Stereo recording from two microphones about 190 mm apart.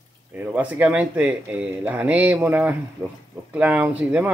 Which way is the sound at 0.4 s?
10° right (ahead or behind).